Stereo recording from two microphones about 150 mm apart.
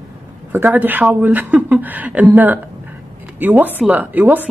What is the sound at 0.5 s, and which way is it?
Speech, 10° right (ahead or behind).